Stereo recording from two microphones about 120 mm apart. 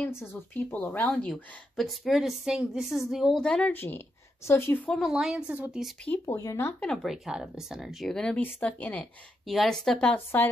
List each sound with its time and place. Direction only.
0.0 s speech: 20° left (ahead or behind)
1.3 s a woman's voice: centre (ahead or behind); by 4.9 s 20° left (ahead or behind)
4.9 s a woman's voice: 5° right (ahead or behind)
6.2 s a woman's voice: 30° left (ahead or behind)
6.8 s a woman's voice: 5° left (ahead or behind)
7.2 s a woman's voice: 5° right (ahead or behind); by 9.0 s 15° left (ahead or behind)
9.5 s speech: centre (ahead or behind)